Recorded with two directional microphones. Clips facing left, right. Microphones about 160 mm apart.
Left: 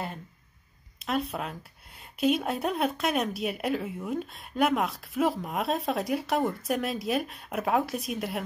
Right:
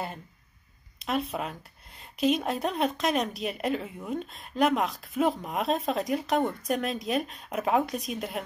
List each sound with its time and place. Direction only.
1.0 s speech: centre (ahead or behind)